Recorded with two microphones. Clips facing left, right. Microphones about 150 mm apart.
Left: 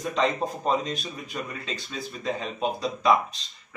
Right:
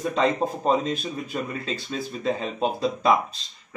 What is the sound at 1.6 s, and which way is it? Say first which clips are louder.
Speech: right 4 dB; 40° right (ahead or behind).